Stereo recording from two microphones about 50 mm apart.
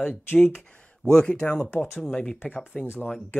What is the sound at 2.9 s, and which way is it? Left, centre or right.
Speech, left.